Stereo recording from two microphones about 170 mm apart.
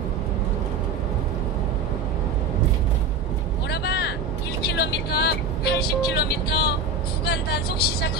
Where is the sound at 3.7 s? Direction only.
75° left (ahead or behind).